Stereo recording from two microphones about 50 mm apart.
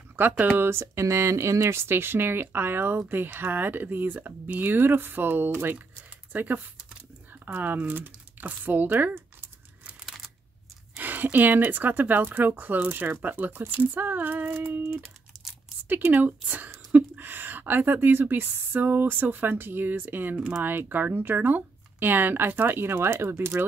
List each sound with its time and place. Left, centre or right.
0.1 s speech: right
0.6 s speech: right
6.3 s a woman's voice: right
10.0 s a sound: centre
11.0 s a sound: right
11.3 s a woman's voice: right
14.8 s speech: right
15.3 s a sound: centre
15.9 s a woman's voice: right
22.8 s speech: right